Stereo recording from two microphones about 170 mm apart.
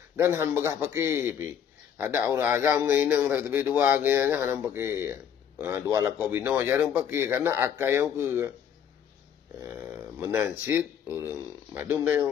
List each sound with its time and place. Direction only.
0.1 s a man's voice: 15° right (ahead or behind)
9.6 s speech: 15° right (ahead or behind)